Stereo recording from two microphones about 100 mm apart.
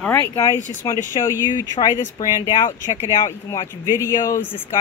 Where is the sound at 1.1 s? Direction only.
50° left (ahead or behind).